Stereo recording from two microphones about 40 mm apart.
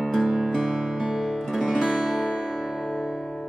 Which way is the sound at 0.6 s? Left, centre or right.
Centre.